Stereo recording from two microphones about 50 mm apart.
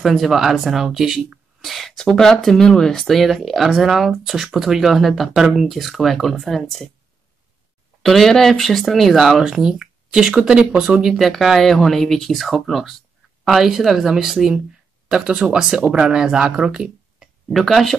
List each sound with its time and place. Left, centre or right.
0.0 s speech: centre
8.0 s speech: centre
11.1 s speech: centre
17.5 s speech: centre